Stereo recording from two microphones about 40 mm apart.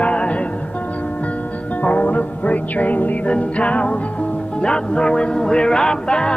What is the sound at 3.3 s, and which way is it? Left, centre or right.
Music, left.